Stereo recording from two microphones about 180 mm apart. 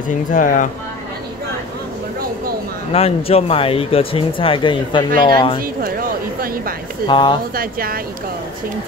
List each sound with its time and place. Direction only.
0.1 s speech: 45° left (ahead or behind)
2.9 s speech: 35° left (ahead or behind)
5.6 s a sound: 55° right (ahead or behind)
7.1 s speech: 25° left (ahead or behind)
7.5 s speech: 55° right (ahead or behind)